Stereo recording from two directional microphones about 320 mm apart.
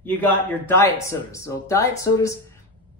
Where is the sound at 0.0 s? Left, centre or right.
Centre.